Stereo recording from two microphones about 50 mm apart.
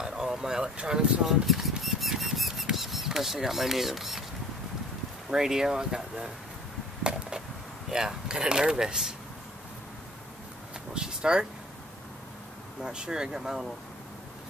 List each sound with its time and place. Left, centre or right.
0.0 s speech: centre
1.2 s speech: centre
1.8 s a sound: centre
2.6 s speech: centre
5.3 s speech: centre
7.0 s chop: centre
7.9 s speech: centre
11.0 s speech: centre
12.8 s speech: centre